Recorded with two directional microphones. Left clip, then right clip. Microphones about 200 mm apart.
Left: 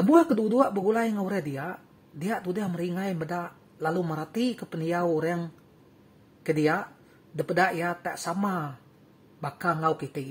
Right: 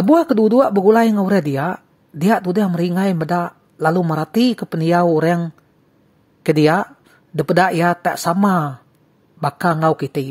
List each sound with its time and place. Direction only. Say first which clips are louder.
0.0 s speech: right 8 dB; 45° right (ahead or behind)
6.4 s speech: right 11 dB; 50° right (ahead or behind)